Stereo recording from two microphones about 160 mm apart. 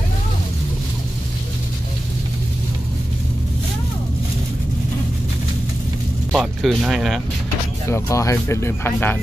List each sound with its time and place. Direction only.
6.3 s speech: 5° right (ahead or behind)
7.9 s speech: 20° left (ahead or behind)